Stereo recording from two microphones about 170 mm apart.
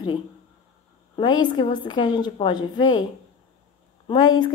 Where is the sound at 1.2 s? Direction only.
25° left (ahead or behind).